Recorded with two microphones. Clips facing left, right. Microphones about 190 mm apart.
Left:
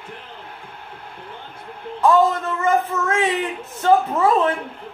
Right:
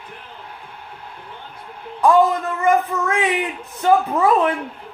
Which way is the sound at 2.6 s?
15° right (ahead or behind).